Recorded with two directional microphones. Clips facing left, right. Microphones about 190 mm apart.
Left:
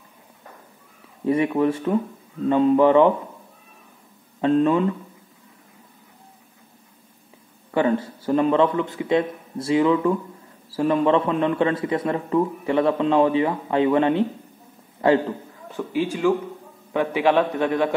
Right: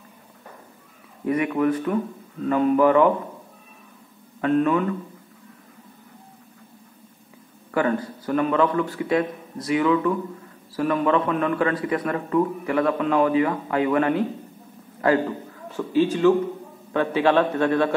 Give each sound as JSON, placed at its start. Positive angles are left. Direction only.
{"t": 1.2, "sound": "speech", "side_deg": 25}
{"t": 4.4, "sound": "speech", "side_deg": 25}
{"t": 7.7, "sound": "a man's voice", "side_deg": 25}
{"t": 15.7, "sound": "a man's voice", "side_deg": 15}